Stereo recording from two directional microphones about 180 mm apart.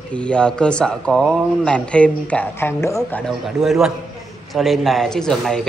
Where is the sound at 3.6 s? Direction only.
Centre (ahead or behind).